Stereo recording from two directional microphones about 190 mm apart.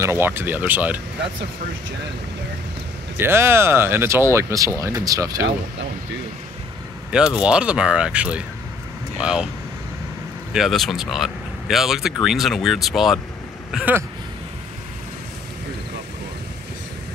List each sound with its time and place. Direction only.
0.0 s speech: 15° right (ahead or behind)
3.2 s speech: 10° right (ahead or behind)
7.1 s speech: 5° right (ahead or behind)
10.5 s speech: centre (ahead or behind)